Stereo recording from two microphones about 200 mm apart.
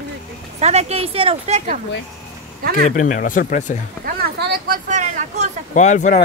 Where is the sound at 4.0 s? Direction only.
50° right (ahead or behind).